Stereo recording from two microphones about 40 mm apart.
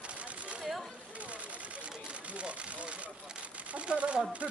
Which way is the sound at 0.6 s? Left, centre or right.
Centre.